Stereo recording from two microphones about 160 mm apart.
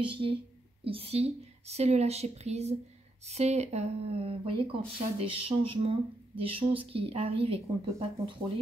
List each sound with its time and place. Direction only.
0.0 s speech: 35° right (ahead or behind)